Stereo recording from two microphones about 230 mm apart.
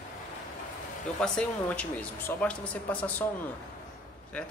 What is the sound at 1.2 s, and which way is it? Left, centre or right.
Speech, centre.